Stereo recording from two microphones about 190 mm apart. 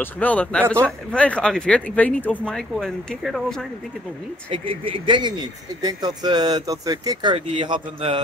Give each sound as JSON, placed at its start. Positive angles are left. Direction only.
{"t": 0.0, "sound": "speech", "side_deg": 10}
{"t": 4.5, "sound": "speech", "side_deg": -25}